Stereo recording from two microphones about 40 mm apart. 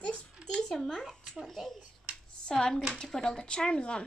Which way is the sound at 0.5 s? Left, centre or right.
Centre.